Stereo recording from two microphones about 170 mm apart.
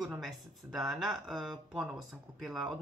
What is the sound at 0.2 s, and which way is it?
Speech, centre (ahead or behind).